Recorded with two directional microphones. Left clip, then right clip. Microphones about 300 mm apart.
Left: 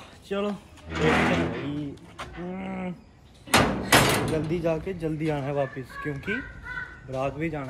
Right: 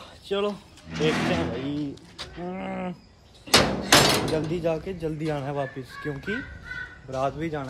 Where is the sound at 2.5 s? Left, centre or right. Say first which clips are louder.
Right 5 dB; centre.